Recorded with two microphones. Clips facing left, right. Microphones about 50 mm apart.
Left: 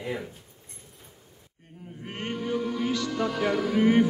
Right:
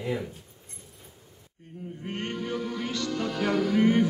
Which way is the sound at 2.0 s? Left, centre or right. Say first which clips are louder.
Left 1 dB; centre.